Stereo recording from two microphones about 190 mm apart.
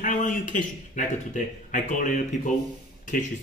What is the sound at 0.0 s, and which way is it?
Speech, 45° left (ahead or behind).